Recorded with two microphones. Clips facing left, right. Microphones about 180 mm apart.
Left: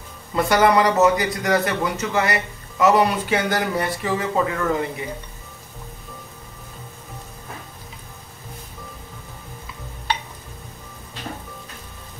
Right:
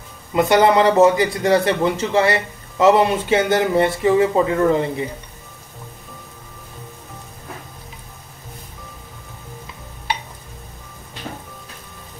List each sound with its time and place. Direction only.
0.3 s a man's voice: 20° right (ahead or behind)